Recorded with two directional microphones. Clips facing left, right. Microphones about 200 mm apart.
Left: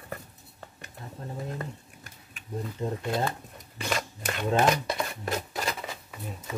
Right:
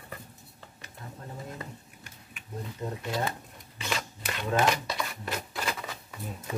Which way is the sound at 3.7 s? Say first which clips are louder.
Left 3 dB; 50° left (ahead or behind).